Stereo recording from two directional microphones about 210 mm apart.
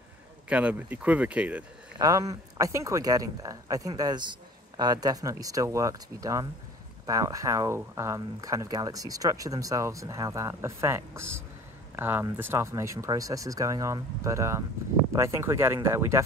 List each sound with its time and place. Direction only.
0.5 s speech: 5° right (ahead or behind)
2.0 s speech: 15° right (ahead or behind)